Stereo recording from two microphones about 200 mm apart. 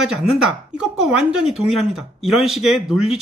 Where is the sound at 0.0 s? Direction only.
Centre (ahead or behind).